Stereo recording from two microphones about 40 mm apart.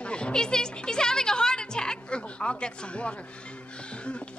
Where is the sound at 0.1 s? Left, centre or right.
Left.